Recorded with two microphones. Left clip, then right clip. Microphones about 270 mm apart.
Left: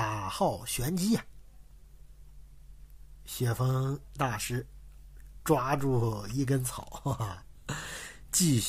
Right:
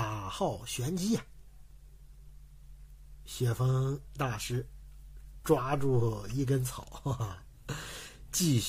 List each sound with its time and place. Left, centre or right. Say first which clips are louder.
0.0 s speech: left 4 dB; centre
3.3 s speech: left 1 dB; centre